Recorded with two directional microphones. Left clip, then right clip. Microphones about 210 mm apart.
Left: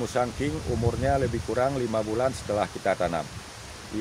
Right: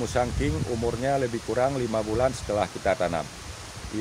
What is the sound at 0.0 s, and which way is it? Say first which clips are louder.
Speech: right 1 dB; 10° right (ahead or behind).